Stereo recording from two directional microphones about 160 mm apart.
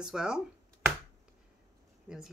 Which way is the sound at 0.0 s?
5° right (ahead or behind).